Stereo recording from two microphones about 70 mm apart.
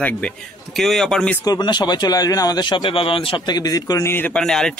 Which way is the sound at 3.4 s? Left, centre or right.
Left.